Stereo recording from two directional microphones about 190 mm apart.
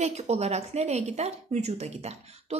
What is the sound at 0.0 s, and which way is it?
Speech, 35° right (ahead or behind).